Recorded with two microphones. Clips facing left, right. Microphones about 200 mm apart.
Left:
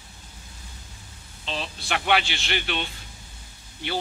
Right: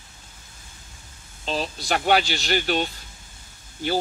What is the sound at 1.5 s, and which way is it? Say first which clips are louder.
Speech: right 5 dB; 40° right (ahead or behind).